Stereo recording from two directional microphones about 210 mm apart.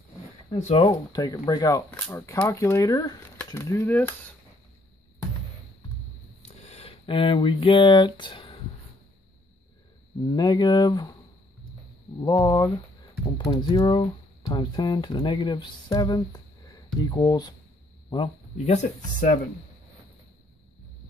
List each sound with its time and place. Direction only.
0.5 s speech: 30° left (ahead or behind); by 4.0 s 10° left (ahead or behind)
6.4 s speech: 30° left (ahead or behind)
10.2 s speech: 20° left (ahead or behind)
12.2 s speech: 20° left (ahead or behind); by 19.3 s 35° left (ahead or behind)